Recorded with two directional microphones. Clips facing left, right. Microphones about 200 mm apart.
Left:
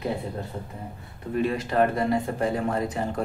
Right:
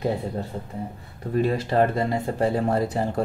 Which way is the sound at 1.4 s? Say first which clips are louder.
Right 1 dB; 30° right (ahead or behind).